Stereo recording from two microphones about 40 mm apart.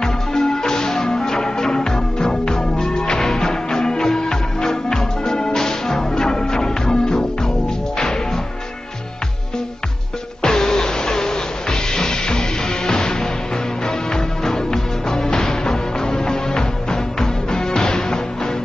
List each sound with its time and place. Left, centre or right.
0.0 s music: centre
10.4 s music: centre